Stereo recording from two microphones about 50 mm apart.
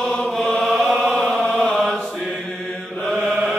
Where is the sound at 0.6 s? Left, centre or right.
Centre.